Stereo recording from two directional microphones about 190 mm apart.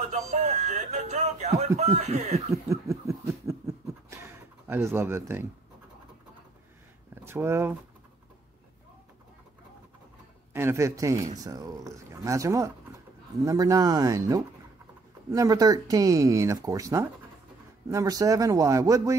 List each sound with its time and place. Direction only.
0.1 s music: 35° right (ahead or behind)
1.8 s speech: 35° right (ahead or behind)
2.5 s a sound: 15° right (ahead or behind)
7.2 s speech: 15° right (ahead or behind)
10.5 s speech: 15° right (ahead or behind)